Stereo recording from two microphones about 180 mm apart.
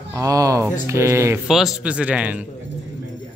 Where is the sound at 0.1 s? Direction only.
20° right (ahead or behind).